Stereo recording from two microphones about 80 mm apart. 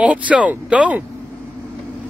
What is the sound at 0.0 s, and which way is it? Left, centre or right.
Speech, centre.